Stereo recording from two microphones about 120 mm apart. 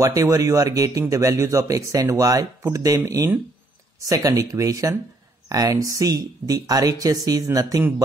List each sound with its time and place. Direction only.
0.0 s speech: 30° right (ahead or behind)